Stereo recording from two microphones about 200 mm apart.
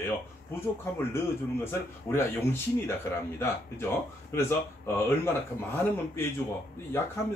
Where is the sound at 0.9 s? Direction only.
10° left (ahead or behind).